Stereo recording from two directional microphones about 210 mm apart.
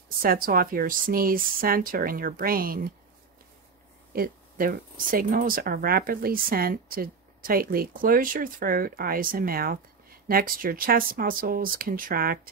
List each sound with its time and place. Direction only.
0.2 s speech: 45° right (ahead or behind)
4.1 s speech: 45° right (ahead or behind)